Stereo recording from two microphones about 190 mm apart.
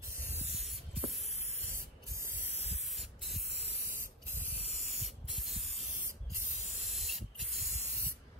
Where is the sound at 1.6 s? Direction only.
15° right (ahead or behind).